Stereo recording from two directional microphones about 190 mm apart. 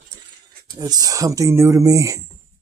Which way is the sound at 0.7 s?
20° right (ahead or behind).